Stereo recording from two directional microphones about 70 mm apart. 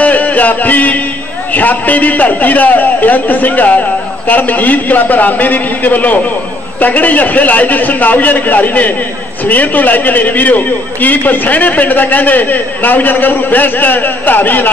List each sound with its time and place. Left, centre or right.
0.0 s music: left
1.5 s a man's voice: left